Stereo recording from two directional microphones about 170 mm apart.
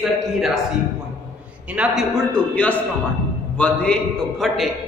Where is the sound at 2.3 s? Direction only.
10° left (ahead or behind).